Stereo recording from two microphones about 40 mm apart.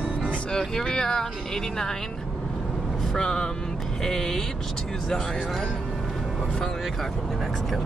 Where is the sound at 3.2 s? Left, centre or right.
Left.